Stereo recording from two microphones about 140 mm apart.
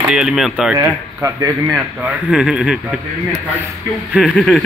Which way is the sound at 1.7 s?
5° right (ahead or behind).